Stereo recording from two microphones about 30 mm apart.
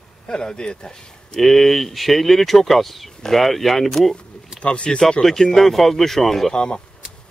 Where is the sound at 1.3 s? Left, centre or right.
Centre.